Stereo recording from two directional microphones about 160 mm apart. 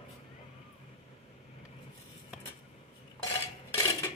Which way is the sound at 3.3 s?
20° left (ahead or behind).